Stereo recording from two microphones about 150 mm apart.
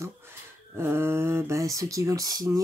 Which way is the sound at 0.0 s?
15° right (ahead or behind).